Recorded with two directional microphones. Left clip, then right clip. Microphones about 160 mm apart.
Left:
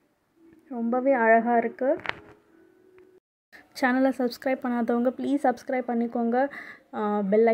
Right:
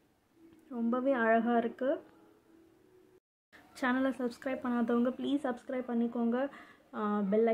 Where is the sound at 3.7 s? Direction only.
45° left (ahead or behind).